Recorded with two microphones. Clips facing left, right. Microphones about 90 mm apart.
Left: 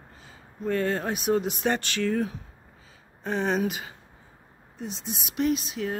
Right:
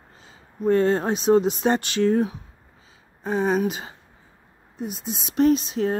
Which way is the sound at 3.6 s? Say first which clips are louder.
Right 3 dB; 25° right (ahead or behind).